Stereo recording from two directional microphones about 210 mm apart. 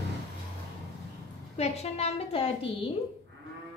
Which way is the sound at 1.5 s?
30° left (ahead or behind).